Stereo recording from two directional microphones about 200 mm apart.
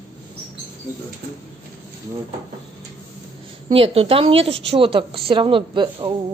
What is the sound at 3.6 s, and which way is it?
A woman's voice, 25° right (ahead or behind).